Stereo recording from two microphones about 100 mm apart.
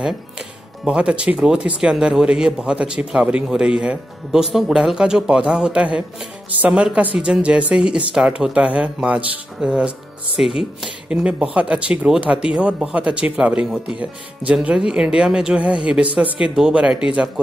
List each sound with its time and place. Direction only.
0.8 s speech: 10° right (ahead or behind)